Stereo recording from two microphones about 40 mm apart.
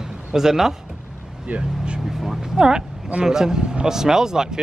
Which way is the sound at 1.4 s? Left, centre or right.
Right.